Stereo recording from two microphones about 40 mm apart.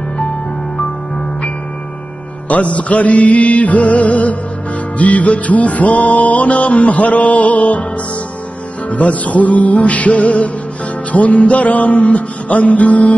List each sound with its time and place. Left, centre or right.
2.4 s music: left
8.9 s music: left